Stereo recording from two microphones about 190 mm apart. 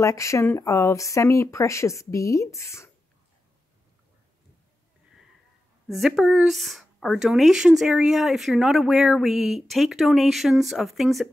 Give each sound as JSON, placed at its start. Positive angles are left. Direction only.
{"t": 0.0, "sound": "speech", "side_deg": 15}
{"t": 5.9, "sound": "speech", "side_deg": 0}